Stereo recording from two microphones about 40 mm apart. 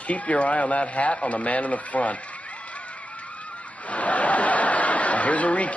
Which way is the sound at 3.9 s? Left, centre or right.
Left.